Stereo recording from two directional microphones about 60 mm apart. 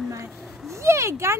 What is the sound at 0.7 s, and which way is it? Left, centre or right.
Speech, right.